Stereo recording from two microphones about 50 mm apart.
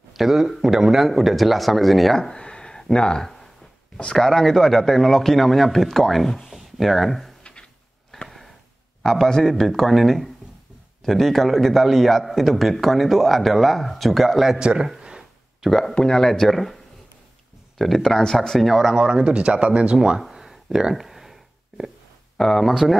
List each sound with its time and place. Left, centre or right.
0.1 s a man's voice: centre
2.1 s speech: centre
4.3 s a man's voice: centre
8.3 s a sound: centre
9.0 s a man's voice: centre
14.6 s a man's voice: centre
15.0 s a sound: centre
15.7 s speech: centre
18.0 s speech: centre
18.9 s speech: centre
20.2 s a sound: centre
22.4 s speech: centre